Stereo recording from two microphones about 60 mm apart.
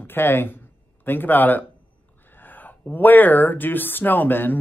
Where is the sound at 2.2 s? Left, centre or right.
Left.